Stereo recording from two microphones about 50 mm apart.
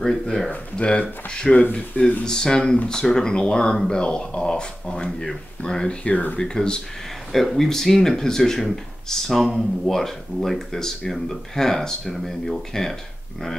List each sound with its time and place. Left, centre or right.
0.0 s speech: centre
1.6 s speech: left
2.2 s speech: centre
7.3 s speech: centre